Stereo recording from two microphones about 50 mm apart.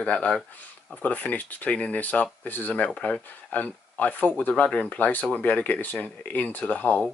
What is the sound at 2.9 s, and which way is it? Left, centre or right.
Speech, centre.